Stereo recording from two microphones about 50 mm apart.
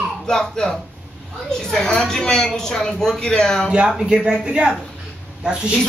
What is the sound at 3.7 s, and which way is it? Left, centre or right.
Speech, centre.